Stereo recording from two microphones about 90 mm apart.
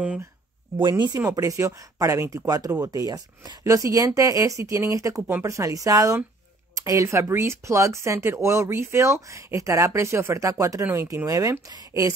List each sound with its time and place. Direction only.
0.7 s speech: 60° right (ahead or behind)
1.3 s speech: 35° right (ahead or behind)
2.4 s speech: 45° right (ahead or behind)